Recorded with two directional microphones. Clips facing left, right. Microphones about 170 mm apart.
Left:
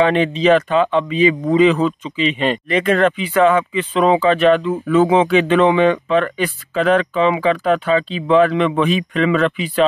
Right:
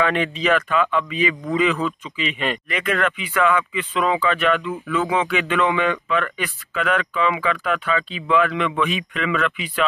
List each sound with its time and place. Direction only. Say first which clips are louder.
0.0 s speech: left 6 dB; 25° left (ahead or behind)